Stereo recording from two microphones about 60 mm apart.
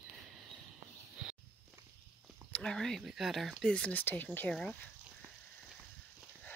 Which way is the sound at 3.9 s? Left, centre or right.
Left.